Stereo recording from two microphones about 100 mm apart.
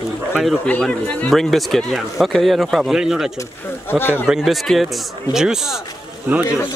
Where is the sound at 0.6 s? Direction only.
15° left (ahead or behind).